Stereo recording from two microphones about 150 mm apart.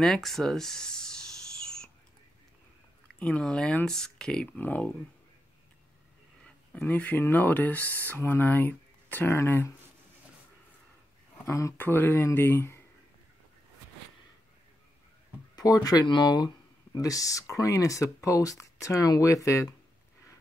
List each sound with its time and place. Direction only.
0.0 s a sound: centre (ahead or behind)
3.2 s speech: 5° left (ahead or behind)
6.4 s speech: 10° left (ahead or behind)
11.4 s speech: 20° left (ahead or behind)
15.5 s speech: 25° left (ahead or behind)